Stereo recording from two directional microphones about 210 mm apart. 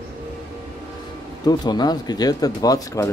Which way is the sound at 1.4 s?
20° left (ahead or behind).